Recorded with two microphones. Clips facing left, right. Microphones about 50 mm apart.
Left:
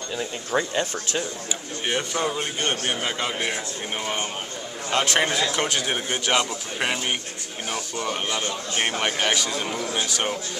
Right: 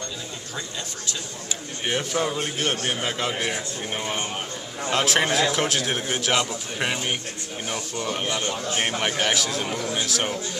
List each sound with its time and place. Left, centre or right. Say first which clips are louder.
0.5 s speech: left 12 dB; left
1.9 s a man's voice: even; centre